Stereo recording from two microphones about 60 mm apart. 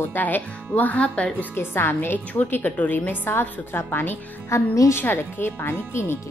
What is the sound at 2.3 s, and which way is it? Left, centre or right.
A woman's voice, left.